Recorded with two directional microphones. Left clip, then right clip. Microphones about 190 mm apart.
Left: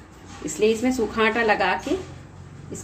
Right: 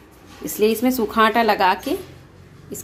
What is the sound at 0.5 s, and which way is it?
A woman's voice, 40° right (ahead or behind).